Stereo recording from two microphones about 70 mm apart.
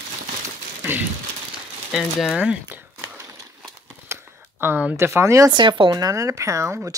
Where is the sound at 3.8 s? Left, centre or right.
Right.